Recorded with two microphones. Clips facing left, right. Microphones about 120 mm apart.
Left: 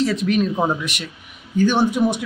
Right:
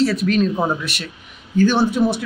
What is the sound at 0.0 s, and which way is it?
Speech, 20° left (ahead or behind).